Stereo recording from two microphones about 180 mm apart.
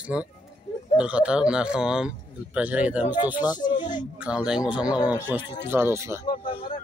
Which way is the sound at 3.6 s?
25° left (ahead or behind).